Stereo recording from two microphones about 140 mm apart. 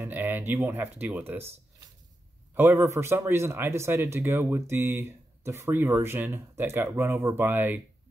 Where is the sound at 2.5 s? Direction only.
15° right (ahead or behind).